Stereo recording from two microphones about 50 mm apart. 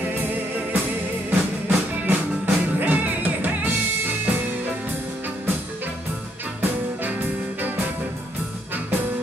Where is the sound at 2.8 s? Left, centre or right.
Right.